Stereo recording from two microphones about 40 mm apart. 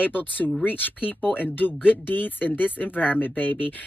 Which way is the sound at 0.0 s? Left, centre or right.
Left.